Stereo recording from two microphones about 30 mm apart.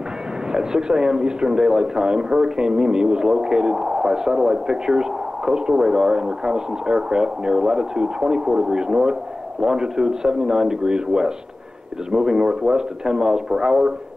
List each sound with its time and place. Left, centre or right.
0.5 s speech: right